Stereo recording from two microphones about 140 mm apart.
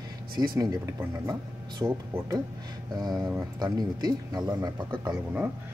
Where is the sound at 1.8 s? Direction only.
20° right (ahead or behind).